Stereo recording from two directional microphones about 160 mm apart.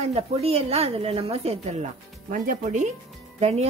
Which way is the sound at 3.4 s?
40° right (ahead or behind).